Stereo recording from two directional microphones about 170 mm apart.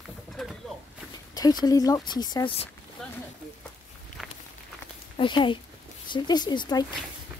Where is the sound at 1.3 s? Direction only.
25° left (ahead or behind).